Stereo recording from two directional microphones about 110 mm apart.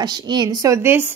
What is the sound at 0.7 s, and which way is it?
Speech, 20° right (ahead or behind).